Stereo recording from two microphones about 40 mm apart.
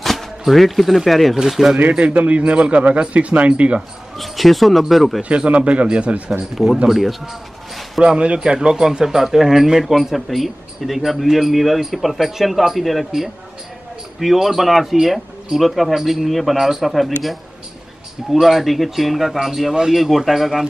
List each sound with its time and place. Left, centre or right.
0.0 s speech: centre
1.4 s speech: centre
2.1 s speech: right
4.2 s a man's voice: centre
5.3 s speech: right
6.5 s a man's voice: centre
8.0 s a man's voice: right; by 13.0 s centre
14.2 s a man's voice: centre